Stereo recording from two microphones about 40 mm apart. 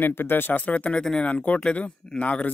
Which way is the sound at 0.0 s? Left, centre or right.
Left.